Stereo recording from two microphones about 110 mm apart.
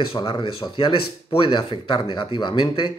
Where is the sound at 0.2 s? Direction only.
45° left (ahead or behind).